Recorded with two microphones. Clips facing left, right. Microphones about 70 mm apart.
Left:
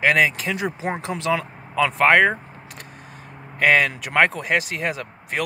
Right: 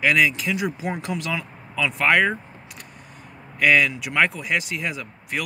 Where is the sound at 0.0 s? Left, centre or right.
Left.